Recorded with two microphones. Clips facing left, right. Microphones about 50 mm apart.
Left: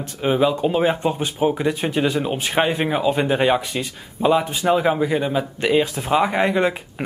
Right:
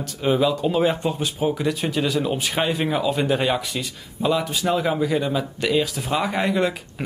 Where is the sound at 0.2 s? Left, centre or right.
Left.